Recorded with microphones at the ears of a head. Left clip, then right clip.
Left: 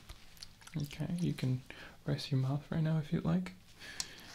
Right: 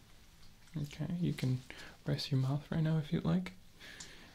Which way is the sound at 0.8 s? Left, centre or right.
Centre.